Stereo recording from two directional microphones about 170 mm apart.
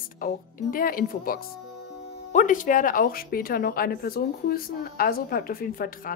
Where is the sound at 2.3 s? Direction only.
50° left (ahead or behind).